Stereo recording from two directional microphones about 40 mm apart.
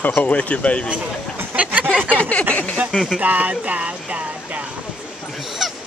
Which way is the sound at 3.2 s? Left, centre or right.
Right.